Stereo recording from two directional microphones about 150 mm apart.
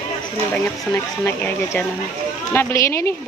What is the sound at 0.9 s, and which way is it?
Speech, 15° left (ahead or behind).